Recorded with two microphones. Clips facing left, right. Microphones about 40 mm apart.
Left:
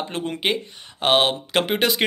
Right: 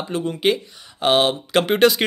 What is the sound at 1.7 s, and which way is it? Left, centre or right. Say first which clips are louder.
Speech: right 8 dB; centre.